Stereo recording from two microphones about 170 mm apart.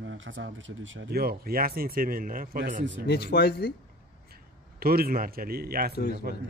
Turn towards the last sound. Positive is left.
turn(degrees=-65)  # may be behind; listen again after turning